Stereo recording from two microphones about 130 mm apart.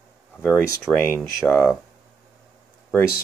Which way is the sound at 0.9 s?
10° right (ahead or behind).